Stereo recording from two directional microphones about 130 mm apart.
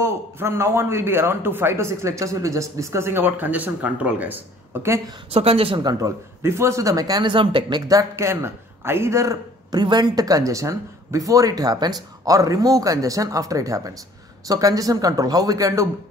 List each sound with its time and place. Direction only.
0.0 s a man's voice: 20° right (ahead or behind)
4.8 s a man's voice: 20° right (ahead or behind)
5.3 s speech: 50° right (ahead or behind)
5.9 s a man's voice: 25° right (ahead or behind); by 7.8 s 40° right (ahead or behind)
7.9 s a man's voice: 25° right (ahead or behind)